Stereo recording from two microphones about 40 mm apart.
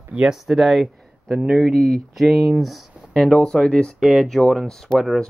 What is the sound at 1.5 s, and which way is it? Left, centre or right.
Speech, centre.